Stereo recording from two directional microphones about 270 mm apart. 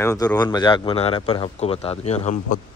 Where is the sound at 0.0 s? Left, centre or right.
Centre.